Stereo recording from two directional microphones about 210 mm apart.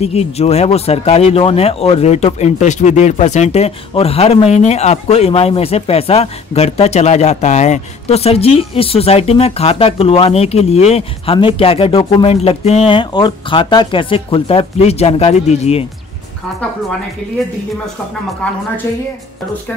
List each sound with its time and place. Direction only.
0.0 s speech: 30° left (ahead or behind)
18.4 s a woman's voice: 5° left (ahead or behind)